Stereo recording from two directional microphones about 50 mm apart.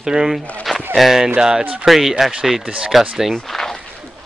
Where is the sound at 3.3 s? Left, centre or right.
Centre.